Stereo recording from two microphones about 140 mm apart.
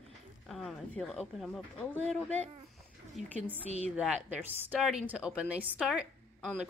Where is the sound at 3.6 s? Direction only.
50° right (ahead or behind).